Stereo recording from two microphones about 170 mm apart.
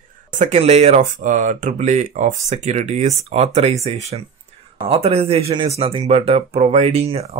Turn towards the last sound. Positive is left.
turn(degrees=-35)  # may be behind; listen again after turning